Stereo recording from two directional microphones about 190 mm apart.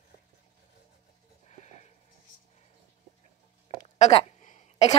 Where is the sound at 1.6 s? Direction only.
35° left (ahead or behind).